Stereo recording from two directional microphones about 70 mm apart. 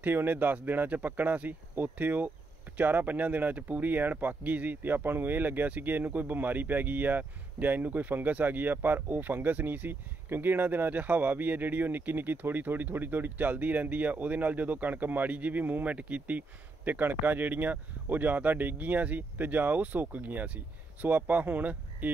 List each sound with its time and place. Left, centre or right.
0.0 s speech: right